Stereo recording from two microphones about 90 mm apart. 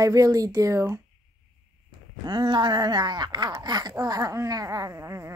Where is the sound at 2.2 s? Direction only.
55° right (ahead or behind); by 5.3 s 35° right (ahead or behind).